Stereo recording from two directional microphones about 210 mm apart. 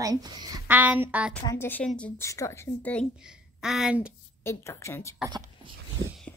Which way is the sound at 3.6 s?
Centre (ahead or behind).